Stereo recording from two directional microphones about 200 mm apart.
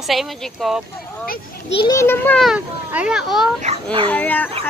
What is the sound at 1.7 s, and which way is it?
Speech, 15° left (ahead or behind).